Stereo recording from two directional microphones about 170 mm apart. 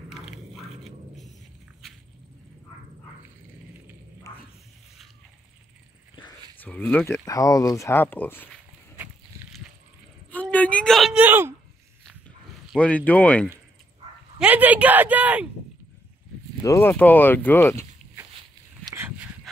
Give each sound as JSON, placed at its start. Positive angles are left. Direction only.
{"t": 0.1, "sound": "a sound", "side_deg": 0}
{"t": 6.1, "sound": "a sound", "side_deg": 30}
{"t": 6.6, "sound": "speech", "side_deg": 10}
{"t": 10.3, "sound": "speech", "side_deg": 10}
{"t": 11.2, "sound": "speech", "side_deg": -10}
{"t": 12.7, "sound": "speech", "side_deg": 10}
{"t": 14.4, "sound": "speech", "side_deg": -10}
{"t": 16.6, "sound": "speech", "side_deg": 15}
{"t": 18.9, "sound": "a sound", "side_deg": -15}